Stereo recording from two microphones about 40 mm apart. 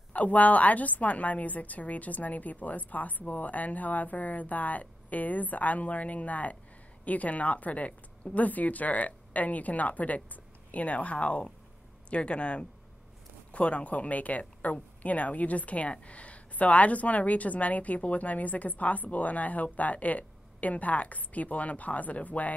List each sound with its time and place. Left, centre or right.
0.1 s a woman's voice: left